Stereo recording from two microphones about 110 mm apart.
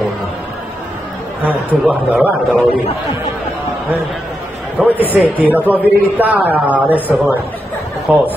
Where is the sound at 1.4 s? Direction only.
15° right (ahead or behind).